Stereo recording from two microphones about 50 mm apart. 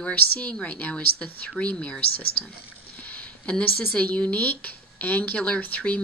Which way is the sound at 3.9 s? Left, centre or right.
Left.